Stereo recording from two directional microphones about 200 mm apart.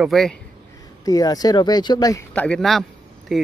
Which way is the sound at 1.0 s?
20° left (ahead or behind).